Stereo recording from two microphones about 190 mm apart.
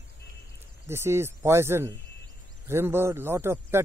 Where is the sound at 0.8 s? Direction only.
15° right (ahead or behind).